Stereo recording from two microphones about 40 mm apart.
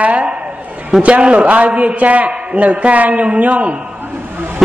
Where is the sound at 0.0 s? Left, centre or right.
Right.